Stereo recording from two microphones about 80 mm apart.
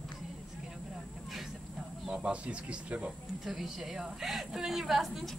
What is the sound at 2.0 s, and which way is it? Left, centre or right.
Speech, centre.